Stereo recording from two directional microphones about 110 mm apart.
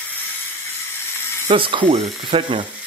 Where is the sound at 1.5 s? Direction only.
50° right (ahead or behind).